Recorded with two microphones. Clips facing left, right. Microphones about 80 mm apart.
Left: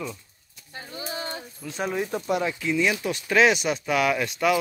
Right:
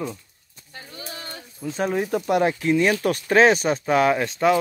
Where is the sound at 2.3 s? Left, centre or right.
Right.